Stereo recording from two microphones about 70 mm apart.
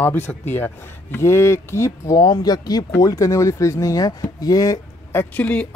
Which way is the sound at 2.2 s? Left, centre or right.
Left.